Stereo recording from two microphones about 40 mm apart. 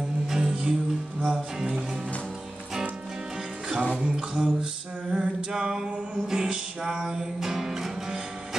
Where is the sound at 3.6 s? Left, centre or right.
Centre.